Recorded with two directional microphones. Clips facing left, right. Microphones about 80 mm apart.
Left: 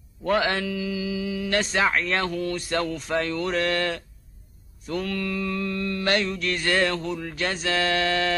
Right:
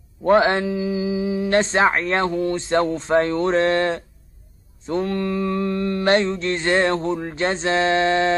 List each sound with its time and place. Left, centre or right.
0.2 s mantra: right